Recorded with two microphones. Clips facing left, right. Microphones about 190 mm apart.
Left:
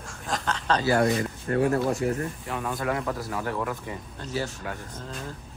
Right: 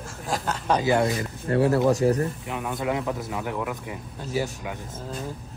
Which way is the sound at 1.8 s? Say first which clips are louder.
Right 5 dB; 90° right.